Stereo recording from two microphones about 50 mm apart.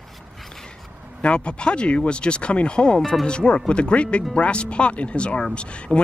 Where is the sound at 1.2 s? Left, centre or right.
Left.